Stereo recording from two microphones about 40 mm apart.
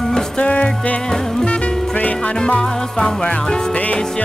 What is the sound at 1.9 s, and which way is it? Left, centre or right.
Music, left.